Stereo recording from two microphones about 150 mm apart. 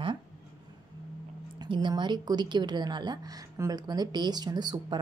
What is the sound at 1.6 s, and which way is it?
A woman's voice, 30° right (ahead or behind).